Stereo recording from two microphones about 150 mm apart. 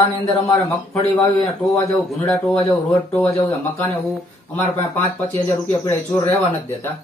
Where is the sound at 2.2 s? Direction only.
5° left (ahead or behind).